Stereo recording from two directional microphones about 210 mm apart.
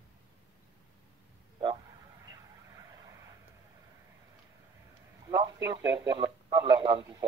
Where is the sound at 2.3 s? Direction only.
15° right (ahead or behind).